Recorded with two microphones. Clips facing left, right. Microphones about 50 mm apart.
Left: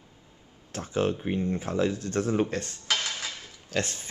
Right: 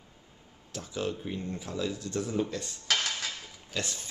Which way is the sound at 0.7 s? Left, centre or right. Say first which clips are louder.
Left 6 dB; left.